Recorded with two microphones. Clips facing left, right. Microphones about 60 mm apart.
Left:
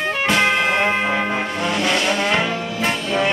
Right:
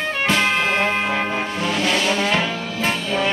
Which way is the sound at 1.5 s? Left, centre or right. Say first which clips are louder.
Even; centre.